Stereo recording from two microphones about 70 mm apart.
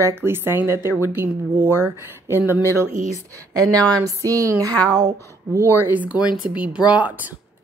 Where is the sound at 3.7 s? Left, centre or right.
Centre.